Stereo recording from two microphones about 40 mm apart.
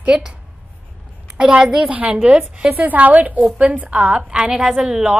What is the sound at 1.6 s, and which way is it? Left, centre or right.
Speech, centre.